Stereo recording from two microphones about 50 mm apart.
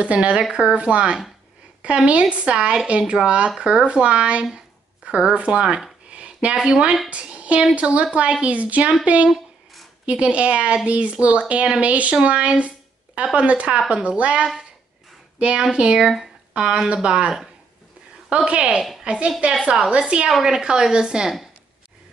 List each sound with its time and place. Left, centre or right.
0.0 s speech: right
4.6 s a sound: centre
6.7 s a woman's voice: centre
20.2 s a woman's voice: centre